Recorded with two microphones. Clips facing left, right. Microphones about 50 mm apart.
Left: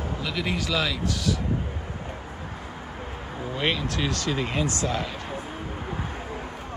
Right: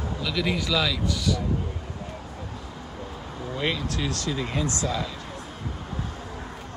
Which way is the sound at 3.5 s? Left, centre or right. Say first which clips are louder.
Left 1 dB; left.